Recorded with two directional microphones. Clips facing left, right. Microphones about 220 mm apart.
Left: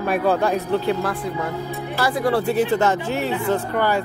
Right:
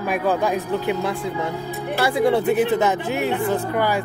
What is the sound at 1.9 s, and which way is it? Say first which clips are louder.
Speech: right 2 dB; 25° right (ahead or behind).